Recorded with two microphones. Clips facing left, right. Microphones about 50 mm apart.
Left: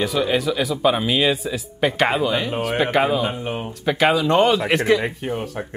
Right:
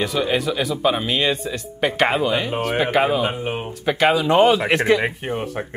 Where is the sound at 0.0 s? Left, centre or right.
Centre.